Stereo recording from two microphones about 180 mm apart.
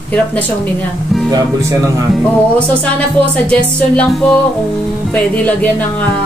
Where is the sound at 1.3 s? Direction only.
15° right (ahead or behind).